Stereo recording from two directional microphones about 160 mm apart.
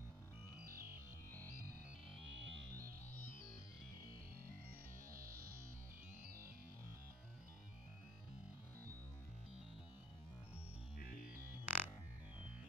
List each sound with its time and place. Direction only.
5.1 s music: 65° right (ahead or behind)
11.2 s music: 10° right (ahead or behind)